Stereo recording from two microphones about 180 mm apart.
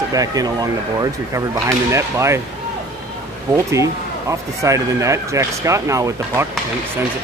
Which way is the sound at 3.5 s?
15° right (ahead or behind).